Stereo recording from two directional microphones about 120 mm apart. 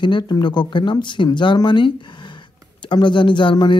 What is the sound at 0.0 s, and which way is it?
Speech, 40° left (ahead or behind).